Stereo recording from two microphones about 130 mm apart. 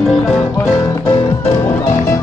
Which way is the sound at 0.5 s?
25° left (ahead or behind).